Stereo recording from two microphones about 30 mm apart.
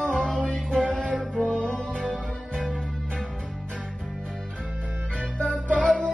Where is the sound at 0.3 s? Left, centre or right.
Left.